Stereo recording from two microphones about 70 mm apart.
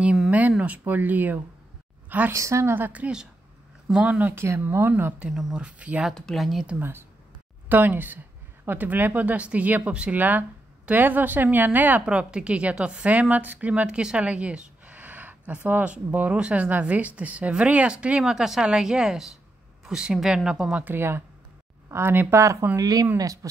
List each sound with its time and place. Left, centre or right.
0.3 s a woman's voice: right
2.3 s a woman's voice: right
2.7 s speech: right
5.2 s a woman's voice: centre
5.6 s a woman's voice: centre
6.0 s speech: centre
6.8 s speech: right
12.1 s a woman's voice: centre
20.8 s speech: right
22.4 s a woman's voice: right
22.8 s speech: right